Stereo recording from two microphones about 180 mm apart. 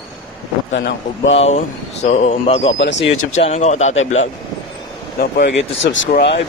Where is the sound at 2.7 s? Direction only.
90° left.